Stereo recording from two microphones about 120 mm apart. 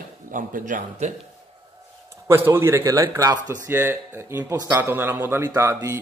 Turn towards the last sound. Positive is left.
turn(degrees=-25)  # may be behind; listen again after turning